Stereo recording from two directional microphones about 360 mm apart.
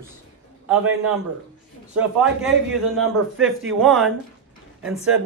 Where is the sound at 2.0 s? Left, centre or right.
Centre.